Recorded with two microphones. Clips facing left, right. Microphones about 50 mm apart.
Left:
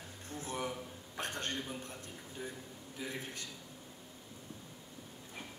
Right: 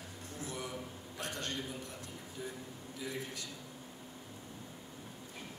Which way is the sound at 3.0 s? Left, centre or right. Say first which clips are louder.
Right 1 dB; left.